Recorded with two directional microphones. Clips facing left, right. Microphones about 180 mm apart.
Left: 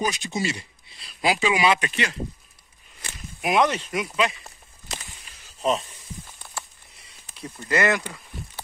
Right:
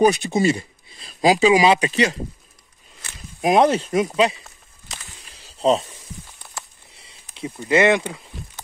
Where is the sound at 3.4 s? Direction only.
35° right (ahead or behind).